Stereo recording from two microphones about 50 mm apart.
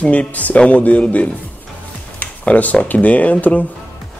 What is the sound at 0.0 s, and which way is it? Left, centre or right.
Speech, left.